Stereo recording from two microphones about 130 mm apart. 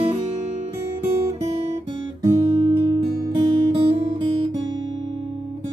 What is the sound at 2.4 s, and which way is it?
Music, 45° right (ahead or behind).